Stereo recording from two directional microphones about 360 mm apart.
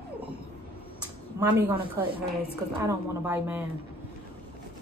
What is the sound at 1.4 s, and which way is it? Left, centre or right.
Speech, centre.